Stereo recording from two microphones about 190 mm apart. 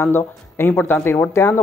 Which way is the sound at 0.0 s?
10° left (ahead or behind).